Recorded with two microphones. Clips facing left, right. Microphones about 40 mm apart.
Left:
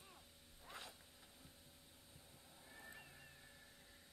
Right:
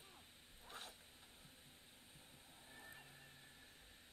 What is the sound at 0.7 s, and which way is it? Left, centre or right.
Zipper, right.